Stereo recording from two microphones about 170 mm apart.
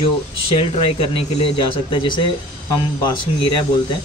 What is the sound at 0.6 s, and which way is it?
Speech, 30° left (ahead or behind).